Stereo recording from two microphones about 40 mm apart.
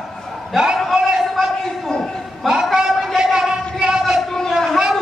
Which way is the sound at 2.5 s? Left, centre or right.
Centre.